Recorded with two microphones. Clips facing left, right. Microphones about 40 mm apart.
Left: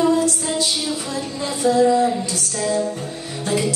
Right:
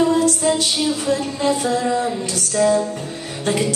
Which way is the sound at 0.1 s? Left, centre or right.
Right.